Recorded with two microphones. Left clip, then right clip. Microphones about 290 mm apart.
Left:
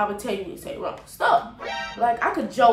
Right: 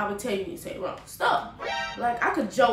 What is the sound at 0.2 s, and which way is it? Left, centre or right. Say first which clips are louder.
A woman's voice: left 1 dB; centre.